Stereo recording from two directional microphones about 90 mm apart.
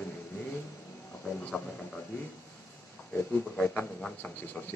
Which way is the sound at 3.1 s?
20° left (ahead or behind).